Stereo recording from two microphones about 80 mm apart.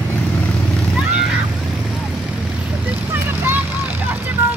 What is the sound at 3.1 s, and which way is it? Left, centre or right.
Vehicle, right.